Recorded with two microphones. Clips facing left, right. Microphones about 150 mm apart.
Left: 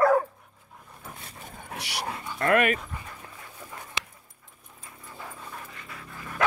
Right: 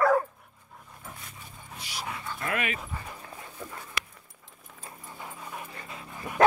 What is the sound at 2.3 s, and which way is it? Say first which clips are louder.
Speech: left 10 dB; 60° left (ahead or behind).